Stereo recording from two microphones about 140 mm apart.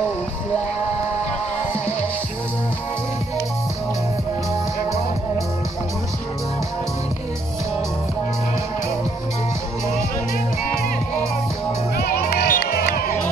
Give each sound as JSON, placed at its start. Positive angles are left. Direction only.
{"t": 12.0, "sound": "music", "side_deg": 90}